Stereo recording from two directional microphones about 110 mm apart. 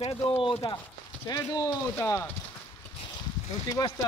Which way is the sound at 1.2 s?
30° left (ahead or behind).